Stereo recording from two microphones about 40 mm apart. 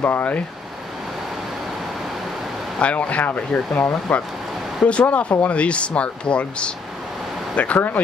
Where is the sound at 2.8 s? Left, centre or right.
Left.